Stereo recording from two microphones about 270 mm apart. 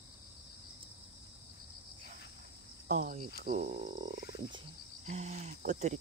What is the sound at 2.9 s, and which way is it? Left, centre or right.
Cricket, right.